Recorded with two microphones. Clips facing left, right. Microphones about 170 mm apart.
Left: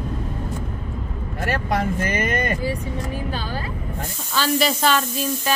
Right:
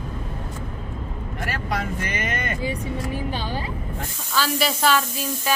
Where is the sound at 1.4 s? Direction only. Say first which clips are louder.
Left 5 dB; 45° left (ahead or behind).